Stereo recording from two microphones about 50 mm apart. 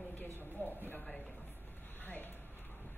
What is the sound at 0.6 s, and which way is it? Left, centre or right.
Speech, left.